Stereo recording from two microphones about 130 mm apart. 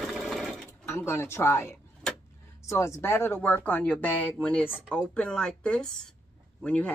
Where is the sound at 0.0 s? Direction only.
Centre (ahead or behind).